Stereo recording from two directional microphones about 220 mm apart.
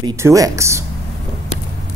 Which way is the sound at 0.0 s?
15° right (ahead or behind).